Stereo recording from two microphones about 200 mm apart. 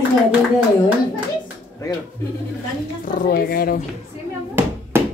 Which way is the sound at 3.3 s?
50° left (ahead or behind).